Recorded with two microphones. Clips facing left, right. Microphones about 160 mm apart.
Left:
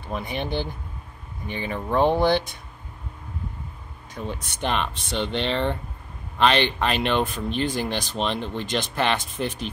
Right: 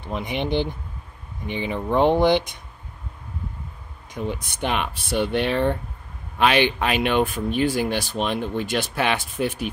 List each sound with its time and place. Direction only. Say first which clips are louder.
0.0 s speech: right 3 dB; 20° right (ahead or behind)
4.1 s speech: right 4 dB; 15° right (ahead or behind)